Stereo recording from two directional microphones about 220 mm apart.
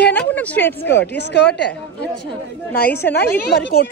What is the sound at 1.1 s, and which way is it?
Speech, 50° left (ahead or behind).